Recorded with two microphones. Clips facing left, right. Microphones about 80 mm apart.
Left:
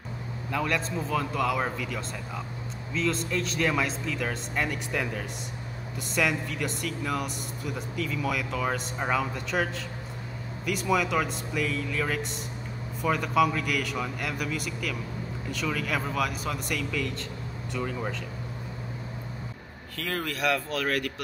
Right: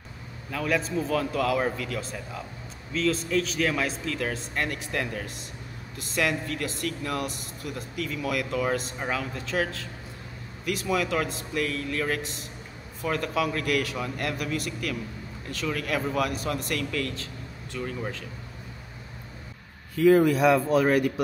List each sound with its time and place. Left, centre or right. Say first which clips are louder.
0.5 s speech: right 1 dB; centre
20.0 s speech: right 12 dB; centre